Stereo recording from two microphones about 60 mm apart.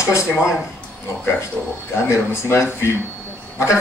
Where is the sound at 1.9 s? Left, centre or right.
Left.